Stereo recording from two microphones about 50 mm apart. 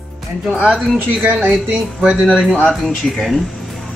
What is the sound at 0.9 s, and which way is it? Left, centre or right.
Speech, right.